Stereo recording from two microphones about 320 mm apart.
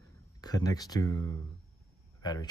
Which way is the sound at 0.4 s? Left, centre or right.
Centre.